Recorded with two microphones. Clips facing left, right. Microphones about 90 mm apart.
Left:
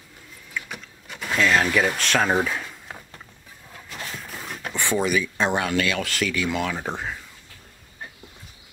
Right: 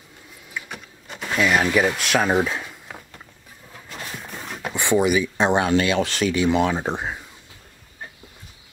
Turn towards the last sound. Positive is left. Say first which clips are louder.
# right 4 dB
turn(degrees=-20)  # may be behind; listen again after turning